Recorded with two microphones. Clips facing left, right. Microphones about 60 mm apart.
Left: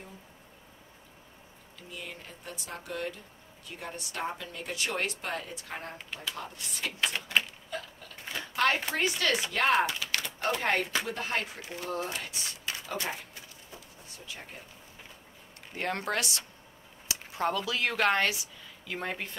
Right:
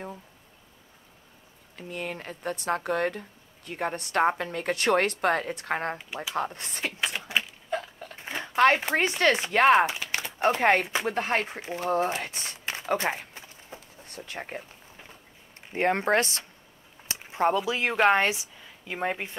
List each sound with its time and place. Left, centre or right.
1.8 s speech: right
6.3 s speech: right
7.0 s speech: centre
7.7 s a sound: right
8.6 s speech: right
11.1 s speech: right
14.0 s speech: right
15.7 s speech: right